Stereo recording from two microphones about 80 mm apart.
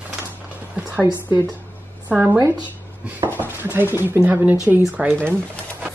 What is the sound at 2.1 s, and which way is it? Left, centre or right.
Speech, right.